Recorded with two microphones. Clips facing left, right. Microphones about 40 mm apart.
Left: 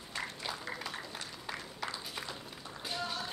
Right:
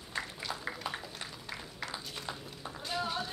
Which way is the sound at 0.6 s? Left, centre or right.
Right.